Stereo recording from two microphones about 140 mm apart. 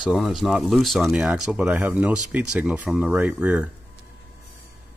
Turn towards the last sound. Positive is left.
turn(degrees=-10)  # may be behind; listen again after turning